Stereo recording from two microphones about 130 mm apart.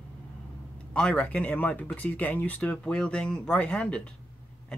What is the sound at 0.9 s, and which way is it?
Speech, 5° left (ahead or behind).